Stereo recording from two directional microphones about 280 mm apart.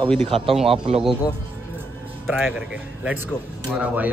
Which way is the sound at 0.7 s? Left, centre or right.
Centre.